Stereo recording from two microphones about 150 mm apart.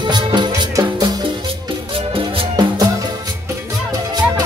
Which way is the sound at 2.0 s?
35° right (ahead or behind).